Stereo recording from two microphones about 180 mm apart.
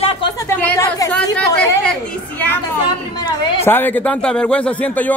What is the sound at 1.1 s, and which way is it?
Chatter, 5° left (ahead or behind).